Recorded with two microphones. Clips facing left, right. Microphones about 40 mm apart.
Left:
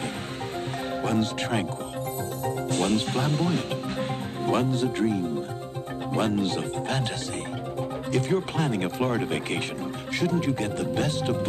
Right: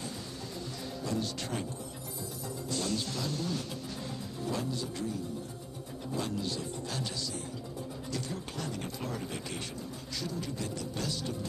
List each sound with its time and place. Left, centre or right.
1.0 s speech: left
8.1 s speech: left